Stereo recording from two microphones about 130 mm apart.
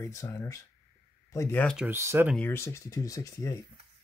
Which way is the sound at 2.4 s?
20° left (ahead or behind).